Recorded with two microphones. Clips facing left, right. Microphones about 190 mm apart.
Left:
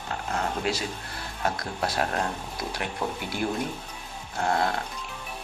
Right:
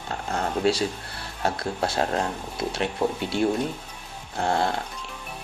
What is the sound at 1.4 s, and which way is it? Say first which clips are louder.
Speech: right 3 dB; 30° right (ahead or behind).